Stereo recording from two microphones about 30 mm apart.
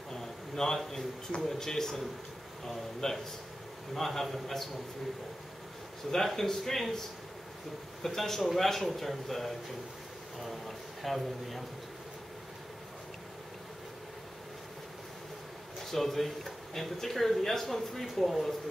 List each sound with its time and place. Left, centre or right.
0.1 s a sound: centre
1.4 s speech: centre
3.0 s speech: left
3.9 s speech: centre
6.1 s speech: centre
8.0 s a man's voice: centre
15.8 s speech: centre